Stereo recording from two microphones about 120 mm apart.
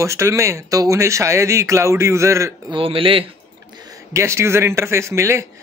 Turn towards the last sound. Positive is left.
turn(degrees=-25)  # may be behind; listen again after turning